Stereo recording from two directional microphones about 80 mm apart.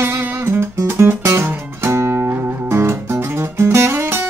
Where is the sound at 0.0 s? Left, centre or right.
Right.